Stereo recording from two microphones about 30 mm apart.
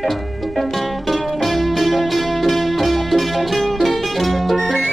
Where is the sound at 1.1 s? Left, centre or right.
Centre.